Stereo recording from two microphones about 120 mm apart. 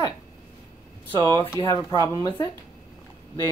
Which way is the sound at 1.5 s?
25° left (ahead or behind).